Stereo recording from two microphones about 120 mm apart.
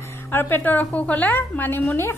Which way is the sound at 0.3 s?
15° left (ahead or behind).